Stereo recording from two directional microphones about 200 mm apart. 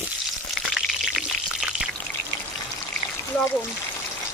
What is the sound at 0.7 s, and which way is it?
Pour, 5° right (ahead or behind).